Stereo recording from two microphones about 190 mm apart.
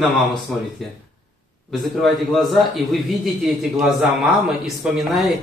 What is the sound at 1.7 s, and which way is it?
A man's voice, centre (ahead or behind).